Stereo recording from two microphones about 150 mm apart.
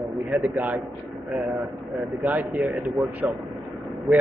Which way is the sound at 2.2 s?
5° right (ahead or behind).